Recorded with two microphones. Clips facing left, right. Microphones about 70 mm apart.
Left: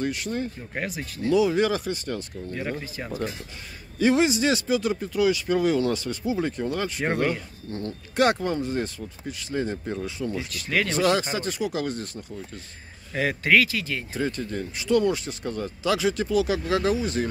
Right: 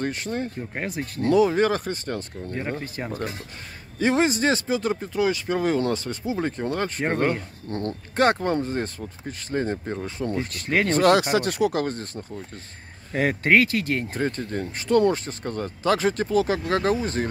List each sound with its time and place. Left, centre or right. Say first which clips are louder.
0.0 s speech: even; right
3.1 s cutlery: left 2 dB; right
4.0 s speech: even; right
11.0 s speech: right 6 dB; right
11.8 s speech: right 2 dB; right
13.7 s speech: right 5 dB; right